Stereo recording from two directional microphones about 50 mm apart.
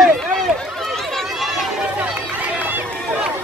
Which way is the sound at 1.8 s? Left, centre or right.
Right.